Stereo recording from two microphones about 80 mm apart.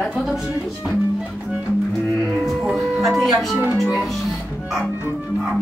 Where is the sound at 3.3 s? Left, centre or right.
Centre.